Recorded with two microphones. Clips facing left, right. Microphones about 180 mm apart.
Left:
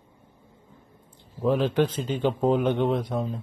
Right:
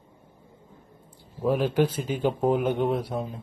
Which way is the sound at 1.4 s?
10° right (ahead or behind).